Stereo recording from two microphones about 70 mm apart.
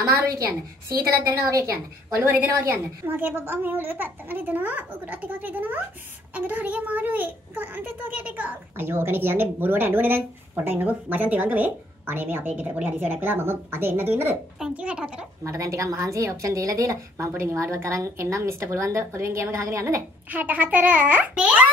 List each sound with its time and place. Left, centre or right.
0.0 s a woman's voice: right
2.1 s a woman's voice: right
8.7 s a woman's voice: right
14.7 s speech: centre
15.4 s a woman's voice: right
20.2 s a child's voice: right